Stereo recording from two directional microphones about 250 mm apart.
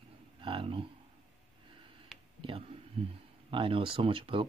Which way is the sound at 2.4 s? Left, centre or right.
Right.